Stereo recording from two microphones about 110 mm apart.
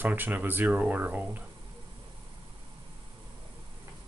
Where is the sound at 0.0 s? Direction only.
15° right (ahead or behind).